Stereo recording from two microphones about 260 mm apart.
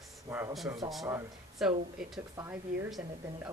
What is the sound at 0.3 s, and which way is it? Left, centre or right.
Speech, centre.